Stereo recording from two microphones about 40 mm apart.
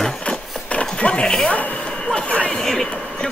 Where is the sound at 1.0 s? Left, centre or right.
Left.